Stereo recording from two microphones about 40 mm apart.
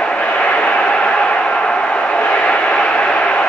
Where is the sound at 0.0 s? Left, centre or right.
Left.